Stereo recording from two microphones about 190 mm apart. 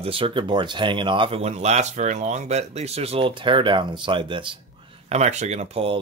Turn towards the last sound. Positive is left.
turn(degrees=-35)  # may be behind; listen again after turning